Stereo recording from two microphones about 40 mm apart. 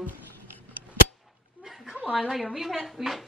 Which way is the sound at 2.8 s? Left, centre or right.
Centre.